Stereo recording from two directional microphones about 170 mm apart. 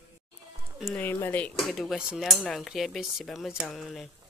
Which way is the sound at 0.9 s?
10° left (ahead or behind).